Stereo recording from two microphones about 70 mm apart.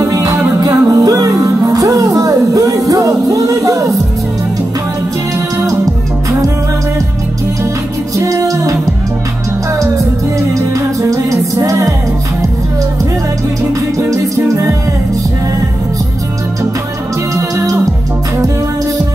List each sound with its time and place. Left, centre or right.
0.0 s music: right
8.2 s music: right
10.5 s music: right
14.5 s music: right
17.4 s music: right